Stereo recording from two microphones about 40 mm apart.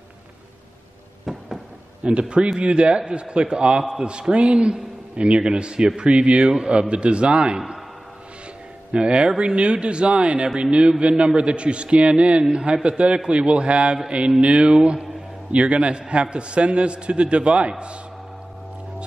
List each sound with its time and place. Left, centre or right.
1.3 s a sound: centre
2.0 s a man's voice: right
8.9 s a man's voice: right